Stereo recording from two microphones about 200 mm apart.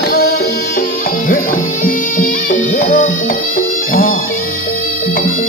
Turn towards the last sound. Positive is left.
turn(degrees=45)  # may be behind; listen again after turning